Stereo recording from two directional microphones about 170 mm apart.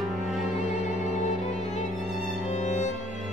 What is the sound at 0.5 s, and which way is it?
Music, 45° left (ahead or behind).